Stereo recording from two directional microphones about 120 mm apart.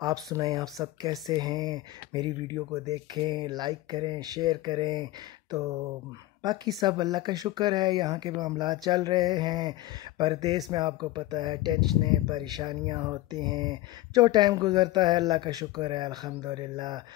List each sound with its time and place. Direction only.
0.0 s speech: 30° right (ahead or behind)